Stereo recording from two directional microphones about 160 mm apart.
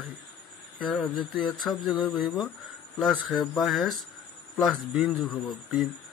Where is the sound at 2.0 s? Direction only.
30° left (ahead or behind).